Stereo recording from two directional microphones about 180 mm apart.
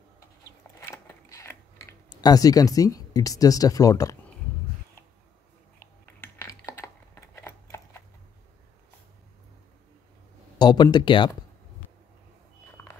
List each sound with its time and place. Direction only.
0.7 s a sound: 15° left (ahead or behind)
6.0 s computer keyboard: 15° left (ahead or behind)
10.6 s speech: 25° left (ahead or behind)